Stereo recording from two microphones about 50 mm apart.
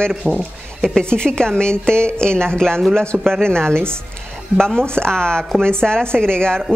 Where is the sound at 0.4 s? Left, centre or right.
Centre.